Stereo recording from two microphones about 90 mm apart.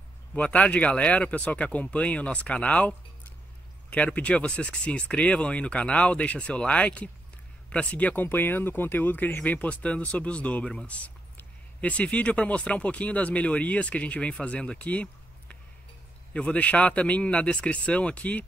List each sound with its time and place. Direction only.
0.3 s speech: 15° left (ahead or behind)